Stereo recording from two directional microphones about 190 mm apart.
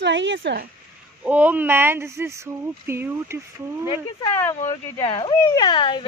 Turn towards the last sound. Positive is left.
turn(degrees=25)  # may be behind; listen again after turning